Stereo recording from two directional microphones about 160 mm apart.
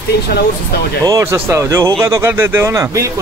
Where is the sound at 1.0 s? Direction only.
20° right (ahead or behind).